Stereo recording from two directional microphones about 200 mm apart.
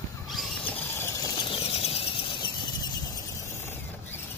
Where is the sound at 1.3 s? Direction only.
25° left (ahead or behind).